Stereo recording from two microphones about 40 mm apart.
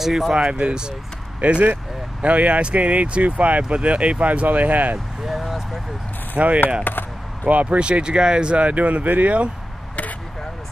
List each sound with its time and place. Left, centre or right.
0.0 s speech: centre
0.5 s speech: right
1.4 s speech: right
5.2 s vehicle: centre
6.3 s speech: right
6.8 s speech: left
7.4 s speech: right